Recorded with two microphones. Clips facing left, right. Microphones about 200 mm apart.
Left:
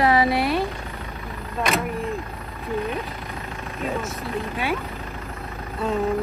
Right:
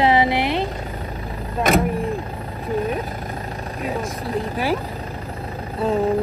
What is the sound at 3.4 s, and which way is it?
Vehicle, 30° right (ahead or behind).